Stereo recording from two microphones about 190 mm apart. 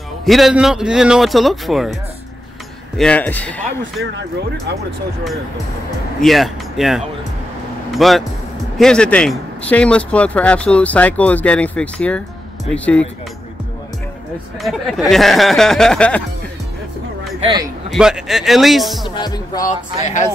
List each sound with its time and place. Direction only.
0.2 s a man's voice: centre (ahead or behind)
3.0 s speech: 5° left (ahead or behind)
4.1 s speech: 65° right (ahead or behind)
6.2 s a man's voice: centre (ahead or behind)
14.6 s a man's voice: centre (ahead or behind)
17.4 s speech: 20° right (ahead or behind)
17.9 s a man's voice: 5° right (ahead or behind)
19.0 s music: 25° left (ahead or behind)
20.0 s speech: 40° left (ahead or behind)